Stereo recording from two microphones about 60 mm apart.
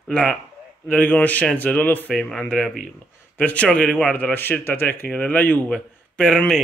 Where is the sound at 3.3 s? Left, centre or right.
Left.